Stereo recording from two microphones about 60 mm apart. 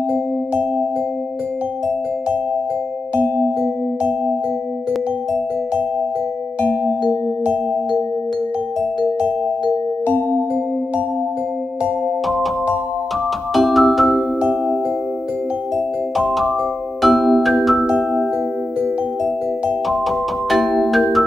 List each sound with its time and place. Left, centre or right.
0.1 s music: centre
3.2 s music: left
3.6 s music: right
13.5 s music: centre
17.0 s music: centre
19.9 s music: centre